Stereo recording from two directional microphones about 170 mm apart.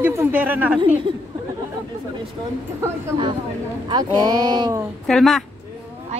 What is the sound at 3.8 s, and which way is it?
Speech, 25° right (ahead or behind).